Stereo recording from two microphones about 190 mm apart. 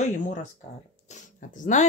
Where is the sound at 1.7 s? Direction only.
40° left (ahead or behind).